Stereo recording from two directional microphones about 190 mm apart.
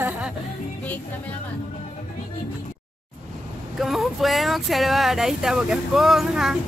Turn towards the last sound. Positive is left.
turn(degrees=-5)  # may be behind; listen again after turning